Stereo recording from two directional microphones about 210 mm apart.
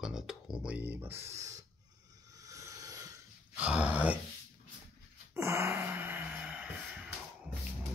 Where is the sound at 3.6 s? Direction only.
5° right (ahead or behind).